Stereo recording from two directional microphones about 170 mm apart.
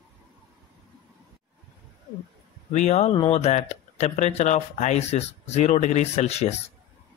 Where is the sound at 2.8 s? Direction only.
40° left (ahead or behind).